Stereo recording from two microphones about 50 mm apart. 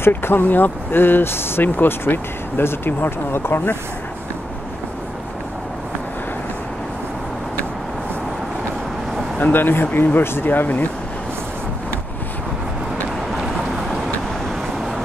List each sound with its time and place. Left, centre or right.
0.0 s speech: left
1.6 s speech: left
9.4 s speech: left